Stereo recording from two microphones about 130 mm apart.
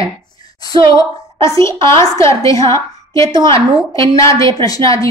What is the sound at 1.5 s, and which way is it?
A woman's voice, 25° left (ahead or behind).